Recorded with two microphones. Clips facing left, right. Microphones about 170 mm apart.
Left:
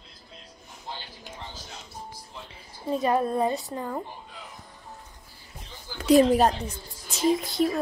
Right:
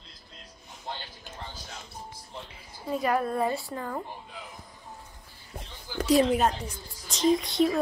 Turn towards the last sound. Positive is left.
turn(degrees=0)  # may be behind; listen again after turning